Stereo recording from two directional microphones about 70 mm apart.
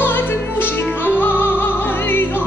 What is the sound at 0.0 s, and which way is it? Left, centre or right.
Music, left.